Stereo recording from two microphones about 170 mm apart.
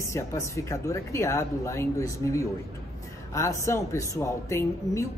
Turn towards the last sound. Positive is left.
turn(degrees=15)  # may be behind; listen again after turning